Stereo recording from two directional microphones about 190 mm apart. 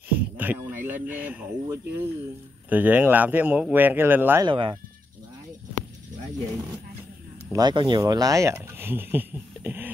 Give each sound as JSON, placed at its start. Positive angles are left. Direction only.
{"t": 0.1, "sound": "a sound", "side_deg": -10}
{"t": 2.7, "sound": "speech", "side_deg": -10}
{"t": 4.5, "sound": "speech", "side_deg": -25}
{"t": 7.5, "sound": "speech", "side_deg": -25}